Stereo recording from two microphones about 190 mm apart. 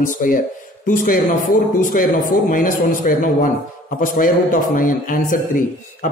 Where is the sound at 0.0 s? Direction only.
45° left (ahead or behind).